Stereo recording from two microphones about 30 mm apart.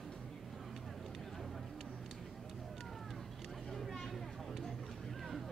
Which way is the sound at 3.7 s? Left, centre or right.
Centre.